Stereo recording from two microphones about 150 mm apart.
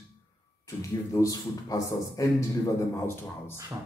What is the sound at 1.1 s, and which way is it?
A man's voice, 20° left (ahead or behind).